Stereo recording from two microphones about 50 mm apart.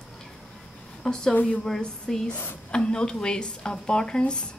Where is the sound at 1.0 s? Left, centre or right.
Centre.